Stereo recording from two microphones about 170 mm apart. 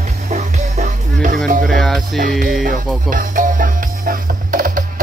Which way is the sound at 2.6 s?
55° right (ahead or behind).